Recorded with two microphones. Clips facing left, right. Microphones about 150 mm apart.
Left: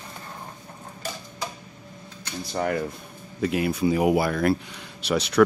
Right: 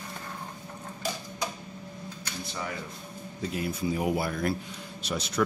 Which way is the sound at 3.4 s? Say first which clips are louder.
Left 8 dB; 75° left (ahead or behind).